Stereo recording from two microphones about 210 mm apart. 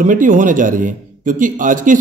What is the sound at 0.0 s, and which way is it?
A man's voice, 40° right (ahead or behind).